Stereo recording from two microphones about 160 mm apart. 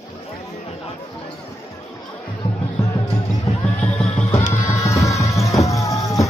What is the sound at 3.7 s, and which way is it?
Music, 10° left (ahead or behind).